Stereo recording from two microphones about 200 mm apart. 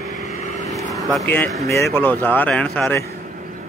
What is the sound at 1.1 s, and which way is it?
Speech, 5° left (ahead or behind).